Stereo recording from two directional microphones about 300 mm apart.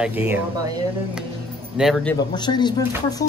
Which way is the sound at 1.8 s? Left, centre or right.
Centre.